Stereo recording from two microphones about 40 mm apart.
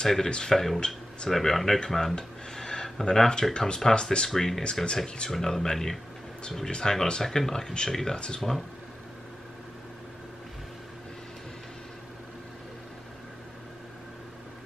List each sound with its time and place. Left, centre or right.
0.0 s speech: centre
1.3 s speech: centre
2.1 s a sound: centre
3.5 s speech: centre
4.3 s speech: centre
4.9 s speech: centre
8.4 s speech: centre